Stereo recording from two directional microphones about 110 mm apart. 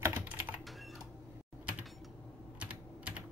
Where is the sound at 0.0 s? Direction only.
15° right (ahead or behind).